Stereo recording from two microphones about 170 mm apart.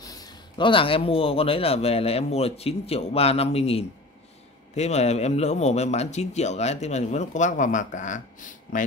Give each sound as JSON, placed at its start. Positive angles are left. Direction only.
{"t": 0.0, "sound": "speech", "side_deg": 20}